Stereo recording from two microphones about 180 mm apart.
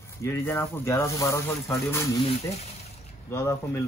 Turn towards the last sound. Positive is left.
turn(degrees=15)  # may be behind; listen again after turning